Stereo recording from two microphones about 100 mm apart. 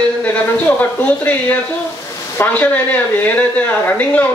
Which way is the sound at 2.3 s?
15° left (ahead or behind).